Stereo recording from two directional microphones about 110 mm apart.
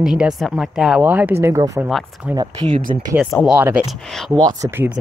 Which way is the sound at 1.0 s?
15° right (ahead or behind).